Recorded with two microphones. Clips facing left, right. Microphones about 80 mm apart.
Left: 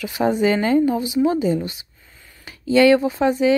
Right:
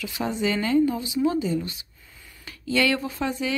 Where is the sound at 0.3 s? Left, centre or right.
Left.